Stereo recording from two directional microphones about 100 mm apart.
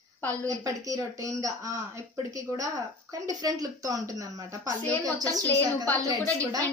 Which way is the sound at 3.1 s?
35° right (ahead or behind).